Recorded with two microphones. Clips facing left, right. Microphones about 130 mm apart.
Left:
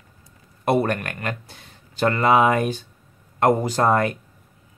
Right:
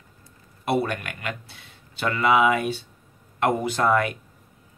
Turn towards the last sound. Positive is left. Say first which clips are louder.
# left 2 dB
turn(degrees=40)  # may be behind; listen again after turning